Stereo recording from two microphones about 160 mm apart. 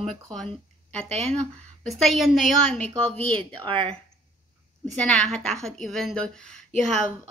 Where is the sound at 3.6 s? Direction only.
30° right (ahead or behind).